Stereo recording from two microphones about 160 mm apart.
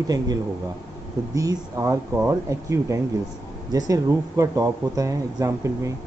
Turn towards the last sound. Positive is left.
turn(degrees=-20)  # may be behind; listen again after turning